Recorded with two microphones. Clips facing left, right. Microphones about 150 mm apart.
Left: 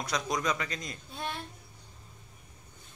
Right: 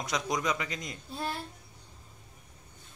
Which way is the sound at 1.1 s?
5° right (ahead or behind).